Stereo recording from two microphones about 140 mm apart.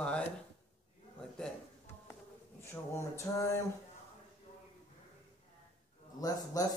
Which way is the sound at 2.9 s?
20° left (ahead or behind).